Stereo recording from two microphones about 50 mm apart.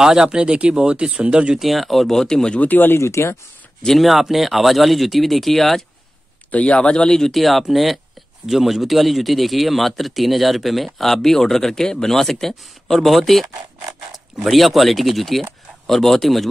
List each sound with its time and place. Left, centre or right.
0.0 s speech: centre
1.6 s speech: centre
2.6 s speech: left
3.0 s speech: left
3.8 s speech: centre
6.5 s speech: left; by 16.4 s centre